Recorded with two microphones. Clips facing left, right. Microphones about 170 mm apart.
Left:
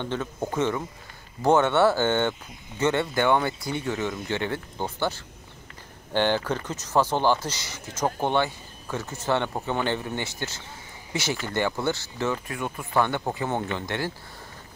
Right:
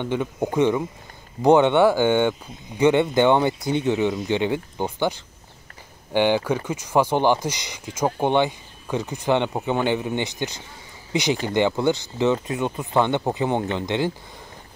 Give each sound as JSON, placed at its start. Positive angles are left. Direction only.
{"t": 0.0, "sound": "speech", "side_deg": -15}